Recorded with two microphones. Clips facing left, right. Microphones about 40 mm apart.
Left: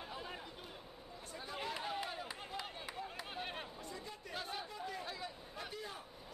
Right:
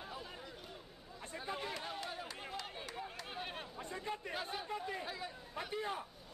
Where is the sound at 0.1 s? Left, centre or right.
Centre.